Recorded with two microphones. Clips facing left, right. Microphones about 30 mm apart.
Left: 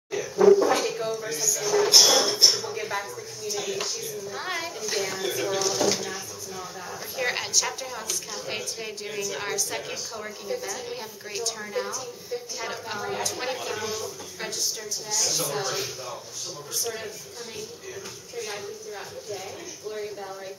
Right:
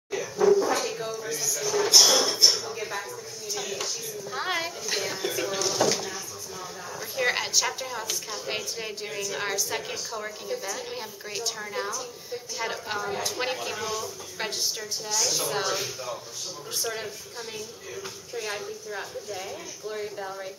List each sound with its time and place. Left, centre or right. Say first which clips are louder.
0.4 s a sound: left 4 dB; centre
1.6 s music: left 3 dB; centre
2.0 s speech: right 1 dB; centre
4.3 s a woman's voice: right 4 dB; centre
13.6 s speech: even; centre
14.4 s a woman's voice: right 2 dB; right
14.8 s a woman's voice: right 1 dB; centre
18.9 s a woman's voice: right 1 dB; centre